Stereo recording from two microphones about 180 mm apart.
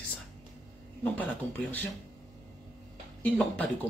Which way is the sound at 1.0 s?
10° left (ahead or behind).